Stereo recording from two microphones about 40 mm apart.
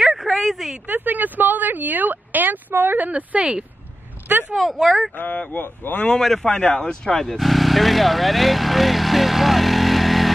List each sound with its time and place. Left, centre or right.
0.0 s a sound: centre
0.8 s speech: right
3.1 s speech: right
4.6 s speech: centre
5.1 s speech: left
6.1 s a man's voice: centre
6.6 s speech: left
7.2 s vehicle: centre